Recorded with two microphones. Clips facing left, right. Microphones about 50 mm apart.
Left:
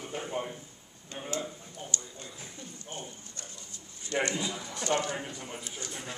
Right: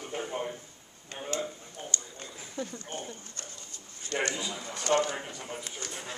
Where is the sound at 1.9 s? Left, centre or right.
Right.